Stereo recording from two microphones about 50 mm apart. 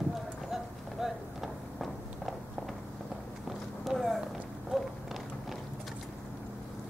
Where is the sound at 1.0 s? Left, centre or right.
Centre.